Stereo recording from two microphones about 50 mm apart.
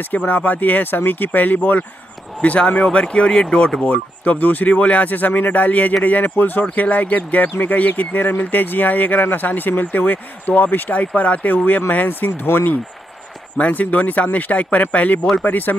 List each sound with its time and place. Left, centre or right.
0.3 s speech: left
3.9 s speech: left
13.6 s speech: left